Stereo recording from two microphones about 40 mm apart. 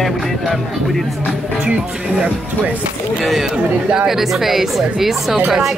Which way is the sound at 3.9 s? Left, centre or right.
Centre.